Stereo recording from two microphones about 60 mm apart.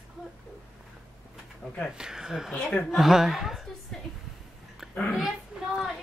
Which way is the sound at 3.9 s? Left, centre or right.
Centre.